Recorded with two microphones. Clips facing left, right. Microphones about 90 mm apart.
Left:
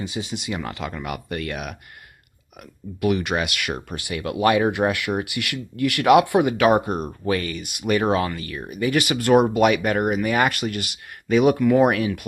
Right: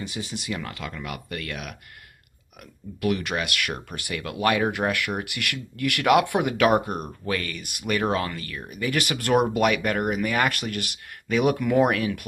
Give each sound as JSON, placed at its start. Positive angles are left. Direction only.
{"t": 0.1, "sound": "speech", "side_deg": 15}
{"t": 3.0, "sound": "speech", "side_deg": 15}
{"t": 9.4, "sound": "speech", "side_deg": 0}
{"t": 9.7, "sound": "speech", "side_deg": 10}